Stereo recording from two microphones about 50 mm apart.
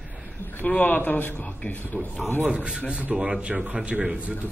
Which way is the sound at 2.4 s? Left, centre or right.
Right.